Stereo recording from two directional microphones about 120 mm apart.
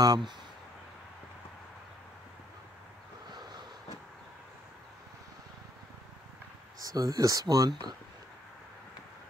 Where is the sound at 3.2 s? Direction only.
35° right (ahead or behind).